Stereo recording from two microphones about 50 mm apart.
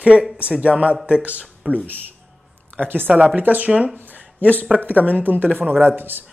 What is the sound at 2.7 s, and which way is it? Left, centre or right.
Speech, right.